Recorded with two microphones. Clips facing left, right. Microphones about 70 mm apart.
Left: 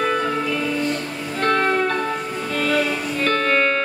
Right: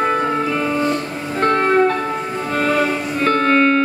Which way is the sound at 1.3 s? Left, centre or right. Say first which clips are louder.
Right 4 dB; right.